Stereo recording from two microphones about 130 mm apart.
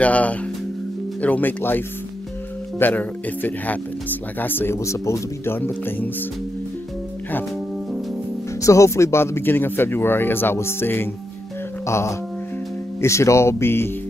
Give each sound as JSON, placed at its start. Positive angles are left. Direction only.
{"t": 0.0, "sound": "speech", "side_deg": 10}
{"t": 2.8, "sound": "speech", "side_deg": 15}
{"t": 8.6, "sound": "speech", "side_deg": 25}
{"t": 11.8, "sound": "a sound", "side_deg": 20}
{"t": 13.0, "sound": "speech", "side_deg": 20}